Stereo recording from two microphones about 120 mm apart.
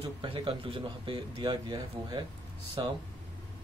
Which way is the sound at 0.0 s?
45° right (ahead or behind).